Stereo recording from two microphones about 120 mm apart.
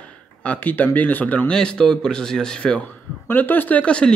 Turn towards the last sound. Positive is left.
turn(degrees=10)  # may be behind; listen again after turning